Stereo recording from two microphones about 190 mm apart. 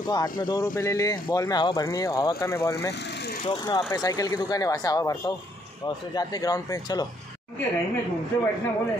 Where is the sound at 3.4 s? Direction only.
20° left (ahead or behind).